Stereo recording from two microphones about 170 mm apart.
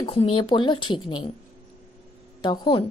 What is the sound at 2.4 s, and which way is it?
Speech, 25° left (ahead or behind).